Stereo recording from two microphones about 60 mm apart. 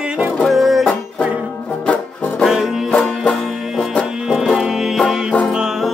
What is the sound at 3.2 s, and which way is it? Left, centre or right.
Music, centre.